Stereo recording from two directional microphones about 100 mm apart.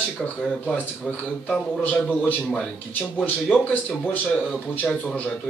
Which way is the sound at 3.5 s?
15° left (ahead or behind).